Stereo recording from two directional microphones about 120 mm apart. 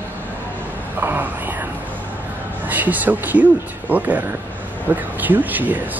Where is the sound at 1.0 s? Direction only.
15° right (ahead or behind).